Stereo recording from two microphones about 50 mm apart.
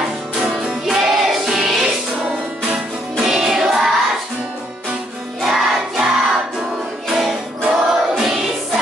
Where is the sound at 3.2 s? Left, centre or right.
Centre.